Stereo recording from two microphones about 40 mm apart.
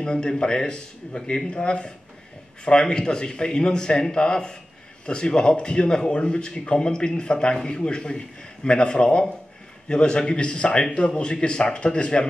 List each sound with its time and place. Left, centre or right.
0.0 s speech: left